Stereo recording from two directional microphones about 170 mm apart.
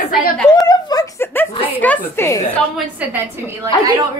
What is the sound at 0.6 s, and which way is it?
A woman's voice, 25° left (ahead or behind).